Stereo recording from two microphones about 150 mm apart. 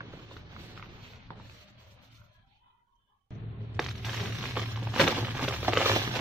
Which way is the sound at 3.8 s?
Centre (ahead or behind).